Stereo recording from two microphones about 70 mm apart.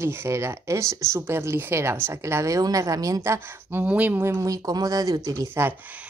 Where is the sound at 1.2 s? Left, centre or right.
Right.